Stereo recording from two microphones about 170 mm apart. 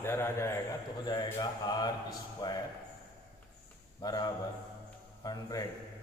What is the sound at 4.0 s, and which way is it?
A man's voice, 20° left (ahead or behind).